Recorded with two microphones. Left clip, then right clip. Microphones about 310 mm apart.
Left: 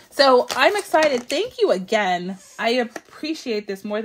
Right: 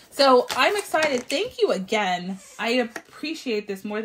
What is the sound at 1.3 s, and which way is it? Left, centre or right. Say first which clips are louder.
Speech: left 3 dB; left.